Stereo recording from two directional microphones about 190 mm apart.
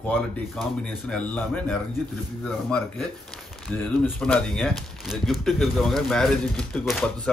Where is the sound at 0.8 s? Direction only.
5° left (ahead or behind).